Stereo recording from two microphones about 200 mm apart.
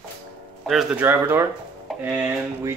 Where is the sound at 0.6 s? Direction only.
Centre (ahead or behind).